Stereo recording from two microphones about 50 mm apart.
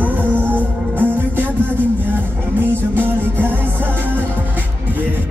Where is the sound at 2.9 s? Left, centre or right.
Right.